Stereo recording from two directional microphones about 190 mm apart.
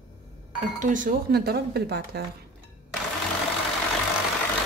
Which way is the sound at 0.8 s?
45° right (ahead or behind).